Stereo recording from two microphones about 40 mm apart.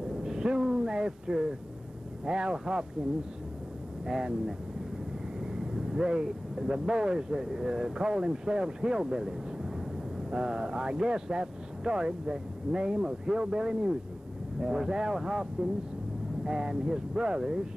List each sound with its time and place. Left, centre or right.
0.2 s a sound: centre
2.2 s speech: centre
4.0 s speech: centre
5.4 s vehicle: centre
6.2 s speech: centre
10.3 s speech: centre